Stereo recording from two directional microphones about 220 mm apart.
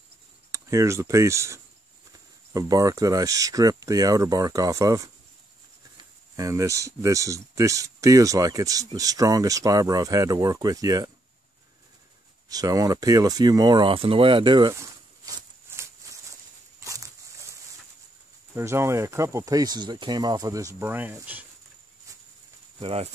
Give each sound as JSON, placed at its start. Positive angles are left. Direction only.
{"t": 0.5, "sound": "speech", "side_deg": -15}
{"t": 6.3, "sound": "speech", "side_deg": -15}
{"t": 12.4, "sound": "speech", "side_deg": -15}
{"t": 15.2, "sound": "a sound", "side_deg": -10}
{"t": 18.5, "sound": "speech", "side_deg": -10}
{"t": 22.8, "sound": "speech", "side_deg": -25}